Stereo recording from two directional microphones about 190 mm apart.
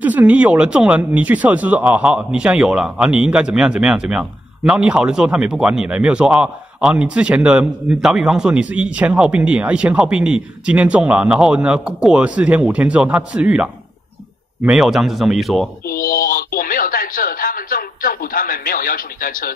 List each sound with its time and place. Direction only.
0.0 s speech: 10° right (ahead or behind)
15.9 s radio: 50° left (ahead or behind)